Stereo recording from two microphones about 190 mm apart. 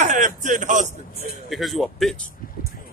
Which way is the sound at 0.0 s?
45° right (ahead or behind).